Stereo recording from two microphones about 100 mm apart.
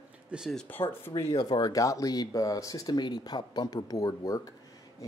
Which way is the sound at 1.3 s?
40° left (ahead or behind).